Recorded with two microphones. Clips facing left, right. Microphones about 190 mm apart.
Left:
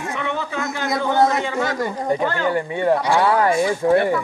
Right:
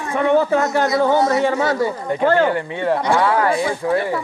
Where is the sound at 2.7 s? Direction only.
10° left (ahead or behind).